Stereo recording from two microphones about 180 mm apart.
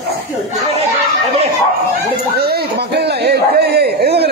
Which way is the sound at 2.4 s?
65° right (ahead or behind).